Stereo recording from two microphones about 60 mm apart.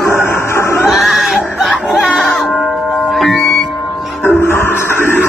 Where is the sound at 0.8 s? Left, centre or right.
Centre.